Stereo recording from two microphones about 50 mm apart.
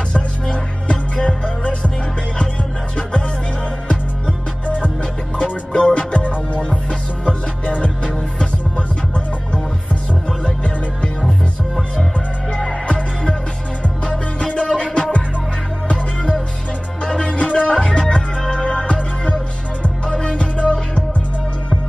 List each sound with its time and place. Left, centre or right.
0.1 s music: left
5.4 s music: centre
10.4 s music: centre
12.5 s music: centre
17.0 s music: centre